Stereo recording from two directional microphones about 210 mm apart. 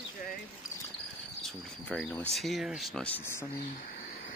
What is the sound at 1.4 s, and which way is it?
Speech, 5° left (ahead or behind).